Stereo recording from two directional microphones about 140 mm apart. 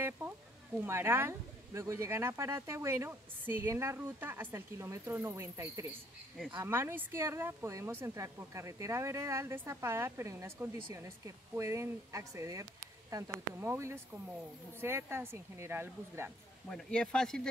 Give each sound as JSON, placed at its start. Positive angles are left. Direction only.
{"t": 0.2, "sound": "a sound", "side_deg": -20}
{"t": 0.7, "sound": "a woman's voice", "side_deg": -15}
{"t": 16.6, "sound": "speech", "side_deg": 5}